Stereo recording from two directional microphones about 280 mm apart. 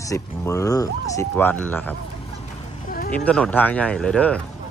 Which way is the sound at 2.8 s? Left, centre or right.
Left.